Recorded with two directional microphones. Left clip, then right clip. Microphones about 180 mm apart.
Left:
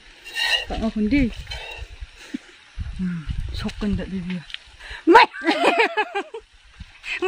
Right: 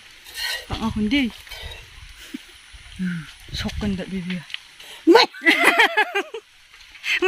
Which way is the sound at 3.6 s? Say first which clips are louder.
Left 3 dB; 5° right (ahead or behind).